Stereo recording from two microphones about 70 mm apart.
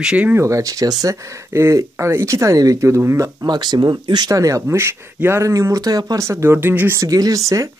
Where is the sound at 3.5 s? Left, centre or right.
Right.